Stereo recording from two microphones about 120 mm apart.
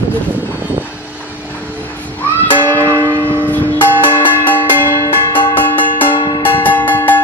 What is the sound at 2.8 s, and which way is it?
Church bell, 25° right (ahead or behind).